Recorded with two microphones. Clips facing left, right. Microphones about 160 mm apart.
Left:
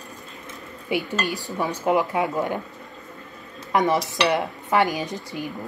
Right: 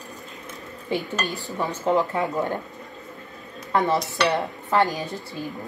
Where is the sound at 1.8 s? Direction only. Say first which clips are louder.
Even; 15° left (ahead or behind).